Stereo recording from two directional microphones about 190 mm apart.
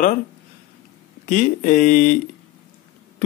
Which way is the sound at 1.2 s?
40° left (ahead or behind).